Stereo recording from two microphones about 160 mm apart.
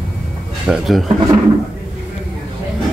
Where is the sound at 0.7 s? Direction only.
Centre (ahead or behind).